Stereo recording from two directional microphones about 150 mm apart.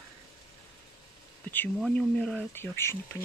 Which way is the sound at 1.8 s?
5° left (ahead or behind).